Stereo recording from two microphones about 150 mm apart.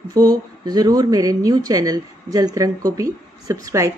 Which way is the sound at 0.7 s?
25° right (ahead or behind).